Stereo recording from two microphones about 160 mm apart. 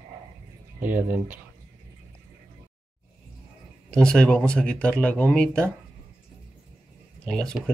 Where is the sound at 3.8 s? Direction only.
5° left (ahead or behind).